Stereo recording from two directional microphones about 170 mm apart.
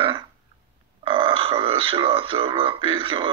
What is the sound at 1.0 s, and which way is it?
Speech, 30° right (ahead or behind).